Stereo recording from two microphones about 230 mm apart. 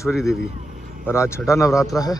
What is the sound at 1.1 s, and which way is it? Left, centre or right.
A man's voice, centre.